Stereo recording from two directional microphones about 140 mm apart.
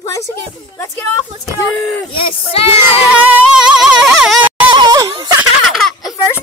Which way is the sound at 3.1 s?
5° right (ahead or behind).